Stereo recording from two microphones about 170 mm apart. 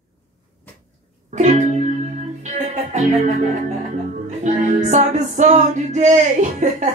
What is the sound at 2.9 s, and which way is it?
Music, 45° right (ahead or behind).